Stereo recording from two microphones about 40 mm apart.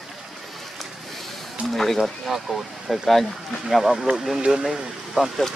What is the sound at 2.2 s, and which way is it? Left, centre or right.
Speech, centre.